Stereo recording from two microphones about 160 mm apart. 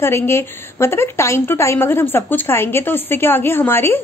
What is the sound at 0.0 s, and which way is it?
A woman's voice, 15° left (ahead or behind).